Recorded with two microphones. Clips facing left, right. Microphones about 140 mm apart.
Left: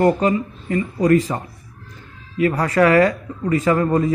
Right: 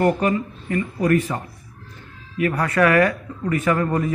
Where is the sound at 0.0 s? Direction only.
20° left (ahead or behind).